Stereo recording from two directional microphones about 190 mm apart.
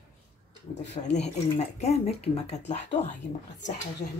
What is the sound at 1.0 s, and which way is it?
Speech, 30° left (ahead or behind).